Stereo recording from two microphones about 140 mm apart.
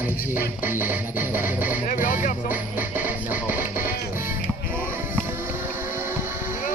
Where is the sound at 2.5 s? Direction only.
10° right (ahead or behind).